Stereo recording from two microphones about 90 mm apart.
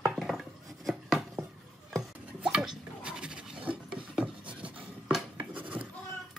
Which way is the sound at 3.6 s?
10° right (ahead or behind).